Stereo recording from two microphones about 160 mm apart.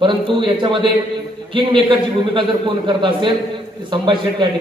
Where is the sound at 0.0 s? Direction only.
30° right (ahead or behind).